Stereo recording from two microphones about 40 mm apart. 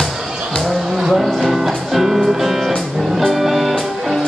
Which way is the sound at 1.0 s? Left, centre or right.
Centre.